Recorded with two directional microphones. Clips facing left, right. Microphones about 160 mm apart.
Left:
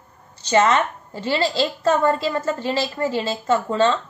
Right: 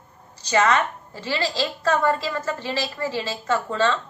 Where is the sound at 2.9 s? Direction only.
25° left (ahead or behind).